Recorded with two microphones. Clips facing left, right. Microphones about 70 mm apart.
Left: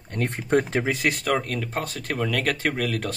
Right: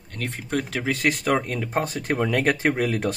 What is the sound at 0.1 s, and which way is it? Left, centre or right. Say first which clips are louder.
Speech: left 5 dB; left.